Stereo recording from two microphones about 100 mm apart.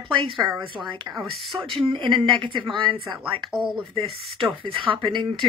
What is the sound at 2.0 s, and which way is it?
Speech, 60° right (ahead or behind).